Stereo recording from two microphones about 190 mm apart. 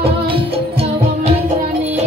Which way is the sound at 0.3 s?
30° right (ahead or behind).